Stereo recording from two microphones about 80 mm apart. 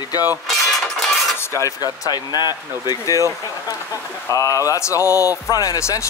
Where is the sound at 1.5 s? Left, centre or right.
Left.